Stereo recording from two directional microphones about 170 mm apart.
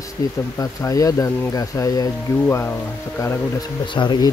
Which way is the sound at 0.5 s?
20° left (ahead or behind).